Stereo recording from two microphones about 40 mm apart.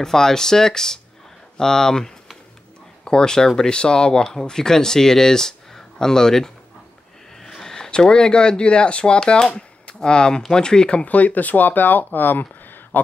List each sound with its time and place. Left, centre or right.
0.0 s speech: centre
11.1 s speech: left